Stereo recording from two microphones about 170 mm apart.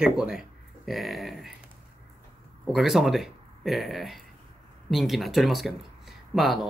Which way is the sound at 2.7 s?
Centre (ahead or behind).